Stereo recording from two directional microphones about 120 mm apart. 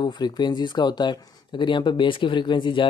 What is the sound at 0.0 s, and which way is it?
Speech, 40° left (ahead or behind).